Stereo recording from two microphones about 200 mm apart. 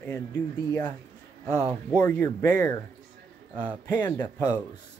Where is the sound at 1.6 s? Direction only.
10° right (ahead or behind).